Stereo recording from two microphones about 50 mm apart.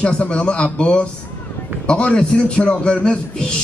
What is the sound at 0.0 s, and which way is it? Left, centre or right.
A man's voice, left.